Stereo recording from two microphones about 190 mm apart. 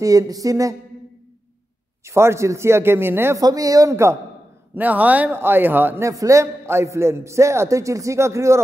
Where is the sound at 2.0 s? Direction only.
15° right (ahead or behind).